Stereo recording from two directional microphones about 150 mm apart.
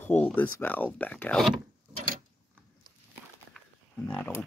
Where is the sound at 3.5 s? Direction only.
10° left (ahead or behind).